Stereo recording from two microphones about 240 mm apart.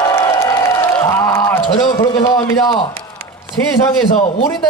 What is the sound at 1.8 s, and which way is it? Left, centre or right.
A man's voice, centre.